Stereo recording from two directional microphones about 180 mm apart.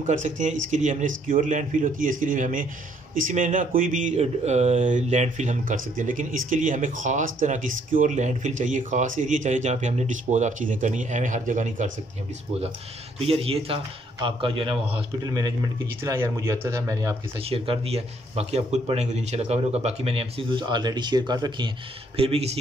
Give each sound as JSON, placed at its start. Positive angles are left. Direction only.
{"t": 0.0, "sound": "speech", "side_deg": -45}
{"t": 13.2, "sound": "a man's voice", "side_deg": -30}
{"t": 17.4, "sound": "speech", "side_deg": -35}